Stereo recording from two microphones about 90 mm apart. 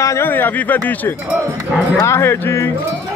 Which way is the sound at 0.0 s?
35° left (ahead or behind).